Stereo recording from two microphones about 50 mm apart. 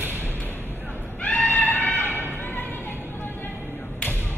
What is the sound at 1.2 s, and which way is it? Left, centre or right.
Music, left.